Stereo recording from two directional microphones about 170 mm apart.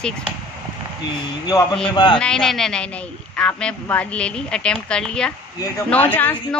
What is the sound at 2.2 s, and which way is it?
A woman's voice, 5° left (ahead or behind).